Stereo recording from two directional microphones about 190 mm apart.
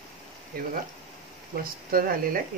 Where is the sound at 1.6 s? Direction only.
50° right (ahead or behind).